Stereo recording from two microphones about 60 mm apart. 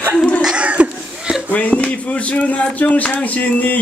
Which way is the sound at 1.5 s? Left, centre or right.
Left.